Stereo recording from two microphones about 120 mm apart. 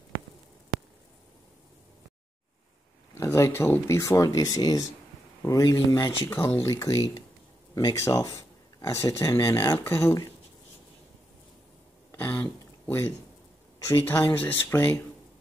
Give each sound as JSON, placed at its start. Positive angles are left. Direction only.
{"t": 3.2, "sound": "speech", "side_deg": 20}
{"t": 12.1, "sound": "a sound", "side_deg": 15}
{"t": 13.8, "sound": "speech", "side_deg": 20}